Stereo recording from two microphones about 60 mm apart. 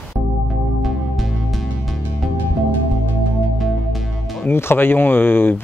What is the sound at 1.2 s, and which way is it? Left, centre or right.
Music, centre.